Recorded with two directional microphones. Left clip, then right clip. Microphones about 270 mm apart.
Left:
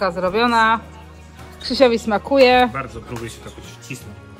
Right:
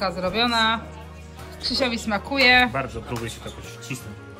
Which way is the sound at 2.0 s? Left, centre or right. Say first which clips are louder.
Left 5 dB; right.